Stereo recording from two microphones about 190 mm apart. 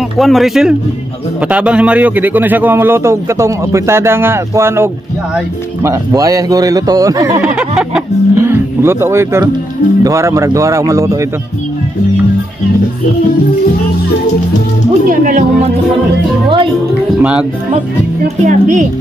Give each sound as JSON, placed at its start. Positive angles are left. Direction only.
{"t": 0.2, "sound": "a man's voice", "side_deg": 0}
{"t": 7.4, "sound": "a sound", "side_deg": -5}
{"t": 8.5, "sound": "a man's voice", "side_deg": -15}
{"t": 15.0, "sound": "speech", "side_deg": -45}
{"t": 17.2, "sound": "speech", "side_deg": -5}
{"t": 18.4, "sound": "a woman's voice", "side_deg": -40}